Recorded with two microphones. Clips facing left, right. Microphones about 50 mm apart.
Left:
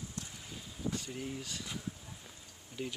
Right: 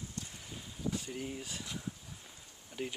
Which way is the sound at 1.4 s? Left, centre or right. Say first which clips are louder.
Even; centre.